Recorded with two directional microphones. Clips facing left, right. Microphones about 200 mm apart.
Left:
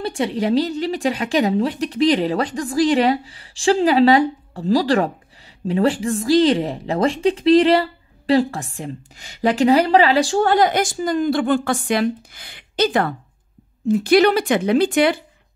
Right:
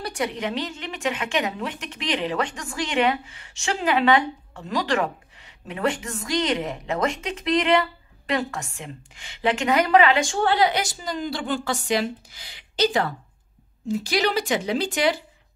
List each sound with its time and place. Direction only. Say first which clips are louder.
0.0 s a woman's voice: left 6 dB; 30° left (ahead or behind); by 15.1 s 55° left (ahead or behind)